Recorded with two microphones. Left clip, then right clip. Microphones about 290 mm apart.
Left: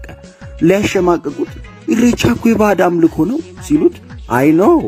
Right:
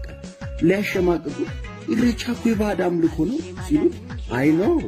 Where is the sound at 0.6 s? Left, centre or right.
Centre.